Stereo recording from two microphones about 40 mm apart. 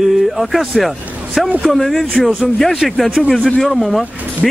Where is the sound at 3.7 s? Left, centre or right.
Centre.